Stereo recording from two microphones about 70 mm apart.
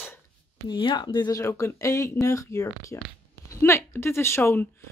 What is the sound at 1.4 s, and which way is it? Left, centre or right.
A woman's voice, left.